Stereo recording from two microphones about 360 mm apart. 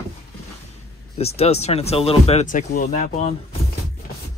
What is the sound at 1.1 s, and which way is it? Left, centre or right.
Speech, centre.